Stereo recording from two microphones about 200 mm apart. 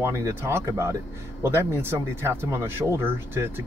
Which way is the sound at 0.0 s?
15° right (ahead or behind).